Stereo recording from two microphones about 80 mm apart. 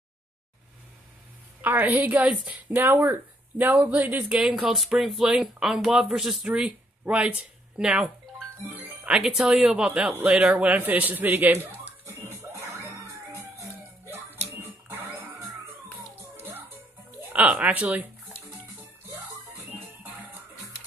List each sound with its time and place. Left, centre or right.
1.6 s a woman's voice: right
4.3 s speech: centre
6.5 s speech: centre
12.1 s music: right
16.2 s music: right
17.3 s speech: centre
20.0 s music: right